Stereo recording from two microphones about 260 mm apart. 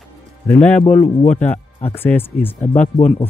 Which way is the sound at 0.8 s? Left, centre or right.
Left.